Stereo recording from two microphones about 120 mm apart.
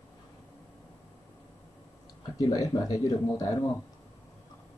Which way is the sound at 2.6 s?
30° left (ahead or behind).